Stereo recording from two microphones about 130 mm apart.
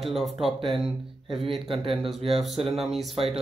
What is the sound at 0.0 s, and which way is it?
Speech, centre (ahead or behind).